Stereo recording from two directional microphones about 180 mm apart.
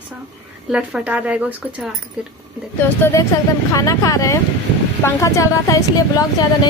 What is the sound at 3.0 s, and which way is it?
Speech, 15° left (ahead or behind).